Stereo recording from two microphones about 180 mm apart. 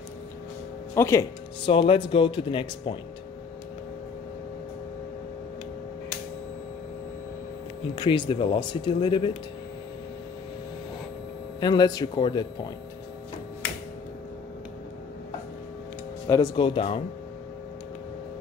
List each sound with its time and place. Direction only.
0.9 s speech: 15° left (ahead or behind)
1.7 s speech: 30° left (ahead or behind)
7.9 s speech: 25° left (ahead or behind)
11.6 s speech: 25° left (ahead or behind)
16.3 s speech: 25° left (ahead or behind)